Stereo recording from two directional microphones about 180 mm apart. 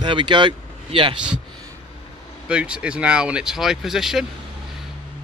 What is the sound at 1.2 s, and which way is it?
A man's voice, 5° right (ahead or behind).